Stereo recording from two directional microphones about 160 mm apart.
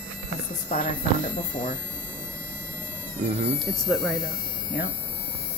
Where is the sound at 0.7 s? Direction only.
45° left (ahead or behind).